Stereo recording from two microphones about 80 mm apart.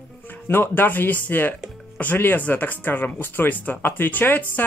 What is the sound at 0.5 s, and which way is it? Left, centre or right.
Speech, left.